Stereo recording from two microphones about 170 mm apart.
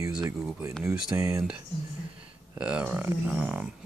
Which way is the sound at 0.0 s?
20° right (ahead or behind).